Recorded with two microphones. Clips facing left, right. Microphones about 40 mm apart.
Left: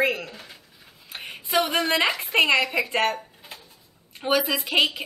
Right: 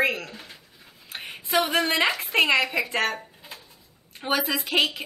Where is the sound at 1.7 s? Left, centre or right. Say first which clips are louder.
Even; centre.